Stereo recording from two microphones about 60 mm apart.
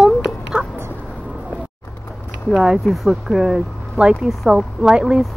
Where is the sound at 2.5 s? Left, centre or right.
Centre.